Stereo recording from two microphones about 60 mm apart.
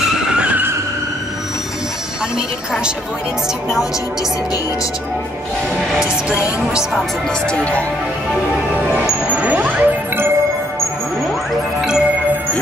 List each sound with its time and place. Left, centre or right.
0.3 s vehicle: right
9.3 s ding: right